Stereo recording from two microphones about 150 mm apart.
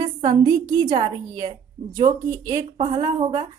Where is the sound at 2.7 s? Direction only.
45° right (ahead or behind).